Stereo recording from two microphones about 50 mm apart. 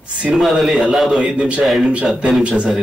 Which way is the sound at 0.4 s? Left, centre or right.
Centre.